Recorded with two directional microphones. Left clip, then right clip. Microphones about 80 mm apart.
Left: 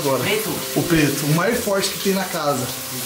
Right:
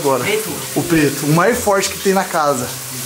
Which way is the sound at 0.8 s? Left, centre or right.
Right.